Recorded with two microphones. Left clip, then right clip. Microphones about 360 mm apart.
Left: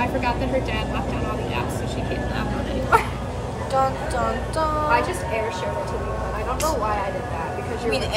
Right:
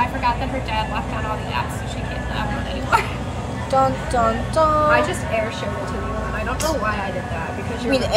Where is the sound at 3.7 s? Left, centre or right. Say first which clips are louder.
Right 4 dB; centre.